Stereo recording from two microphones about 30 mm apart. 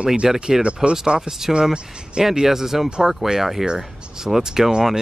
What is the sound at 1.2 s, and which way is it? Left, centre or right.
Speech, centre.